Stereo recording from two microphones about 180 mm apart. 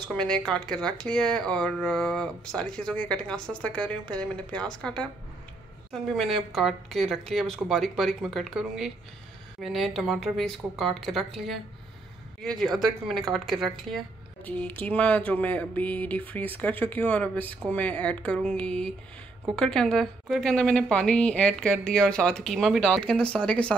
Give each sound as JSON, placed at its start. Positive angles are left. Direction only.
{"t": 0.1, "sound": "a woman's voice", "side_deg": 5}